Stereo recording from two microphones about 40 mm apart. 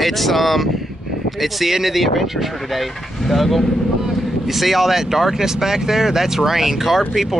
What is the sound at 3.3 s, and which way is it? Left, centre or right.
Speech, centre.